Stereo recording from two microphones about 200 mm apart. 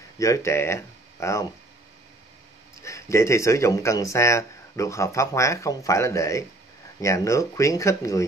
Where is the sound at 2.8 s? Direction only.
15° left (ahead or behind).